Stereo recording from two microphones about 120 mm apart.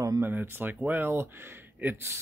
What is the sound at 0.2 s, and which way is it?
Speech, 15° right (ahead or behind).